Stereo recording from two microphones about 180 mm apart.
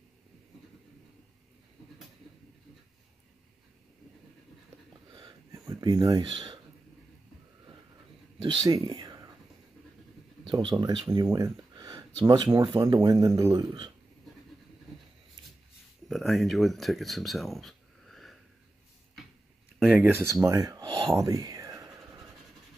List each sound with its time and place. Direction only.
5.1 s a sound: 20° right (ahead or behind)
5.9 s speech: 20° right (ahead or behind)
8.4 s a sound: 20° right (ahead or behind)
10.5 s speech: 25° right (ahead or behind)
16.1 s speech: centre (ahead or behind)
19.8 s speech: 5° right (ahead or behind); by 21.1 s 25° right (ahead or behind)
21.1 s whispering: 20° right (ahead or behind)